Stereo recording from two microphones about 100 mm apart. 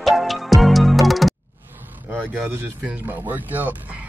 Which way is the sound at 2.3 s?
15° right (ahead or behind).